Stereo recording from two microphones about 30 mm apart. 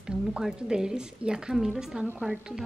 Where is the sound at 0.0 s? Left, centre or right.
Right.